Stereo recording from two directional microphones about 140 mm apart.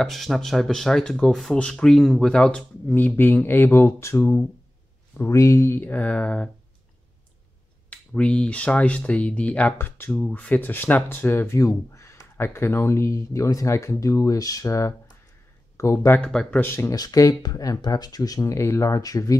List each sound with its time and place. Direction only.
0.0 s speech: centre (ahead or behind)
7.9 s speech: 10° left (ahead or behind)
16.2 s speech: 5° left (ahead or behind); by 19.3 s 25° left (ahead or behind)